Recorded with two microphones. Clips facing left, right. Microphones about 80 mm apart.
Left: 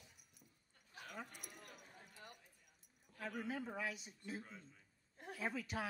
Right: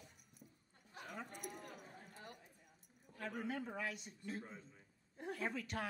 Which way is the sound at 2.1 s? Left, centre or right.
Right.